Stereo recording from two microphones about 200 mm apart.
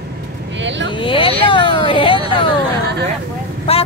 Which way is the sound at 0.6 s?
65° right (ahead or behind).